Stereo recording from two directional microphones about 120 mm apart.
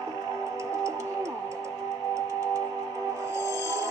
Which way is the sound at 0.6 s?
25° right (ahead or behind).